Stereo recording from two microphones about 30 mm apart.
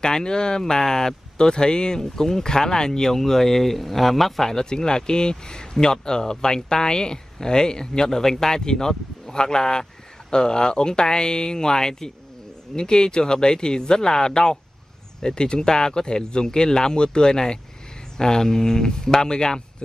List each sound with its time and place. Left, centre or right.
0.0 s speech: left
3.1 s speech: centre
4.6 s speech: left